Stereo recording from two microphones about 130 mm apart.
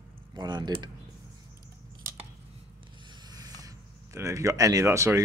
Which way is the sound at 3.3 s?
30° right (ahead or behind).